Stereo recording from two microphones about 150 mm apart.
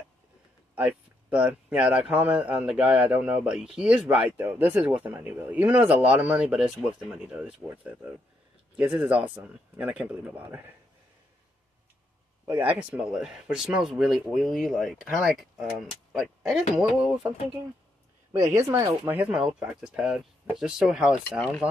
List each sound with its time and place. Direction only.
0.7 s speech: 10° right (ahead or behind)
12.4 s speech: 10° right (ahead or behind)
16.1 s a sound: 5° right (ahead or behind)
16.7 s speech: centre (ahead or behind)
18.7 s speech: 20° right (ahead or behind)
19.1 s speech: 5° right (ahead or behind)